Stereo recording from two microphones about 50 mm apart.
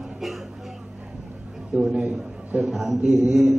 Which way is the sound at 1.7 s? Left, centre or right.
Centre.